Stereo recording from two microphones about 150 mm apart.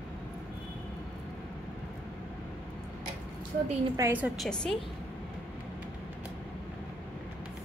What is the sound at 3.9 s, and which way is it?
Speech, 20° right (ahead or behind).